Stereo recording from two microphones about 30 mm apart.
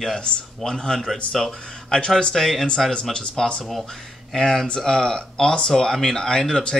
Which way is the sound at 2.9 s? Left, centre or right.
Left.